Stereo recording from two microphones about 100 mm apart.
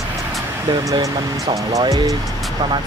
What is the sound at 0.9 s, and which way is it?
Speech, 45° right (ahead or behind).